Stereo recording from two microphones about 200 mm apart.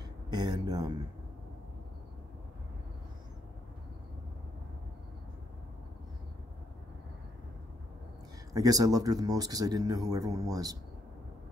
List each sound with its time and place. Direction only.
0.3 s speech: 20° right (ahead or behind)
8.5 s speech: 20° right (ahead or behind)